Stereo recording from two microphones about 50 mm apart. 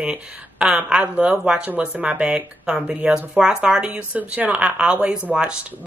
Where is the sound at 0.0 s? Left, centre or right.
Right.